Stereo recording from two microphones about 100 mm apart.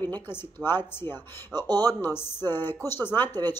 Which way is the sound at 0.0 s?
20° left (ahead or behind).